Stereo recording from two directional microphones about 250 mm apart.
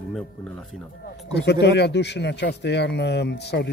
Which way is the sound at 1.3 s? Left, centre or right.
Left.